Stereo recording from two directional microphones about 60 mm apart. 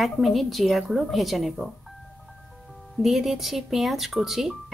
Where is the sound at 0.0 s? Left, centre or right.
Centre.